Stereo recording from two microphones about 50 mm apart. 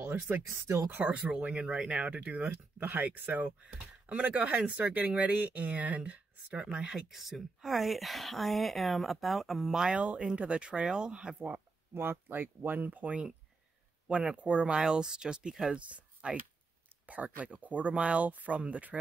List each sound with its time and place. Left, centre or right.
0.0 s a sound: right
0.8 s speech: right
1.1 s speech: right
6.6 s speech: centre
7.1 s speech: centre
9.9 s speech: right
11.3 s speech: right
11.9 s speech: right; by 15.7 s centre
15.7 s speech: right